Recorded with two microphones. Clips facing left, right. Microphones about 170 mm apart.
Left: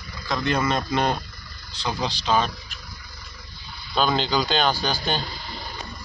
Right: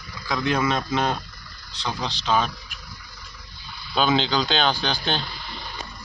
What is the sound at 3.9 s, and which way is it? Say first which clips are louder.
Speech: right 1 dB; centre (ahead or behind).